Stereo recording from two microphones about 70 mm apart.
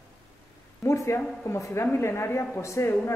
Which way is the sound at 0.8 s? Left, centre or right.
Left.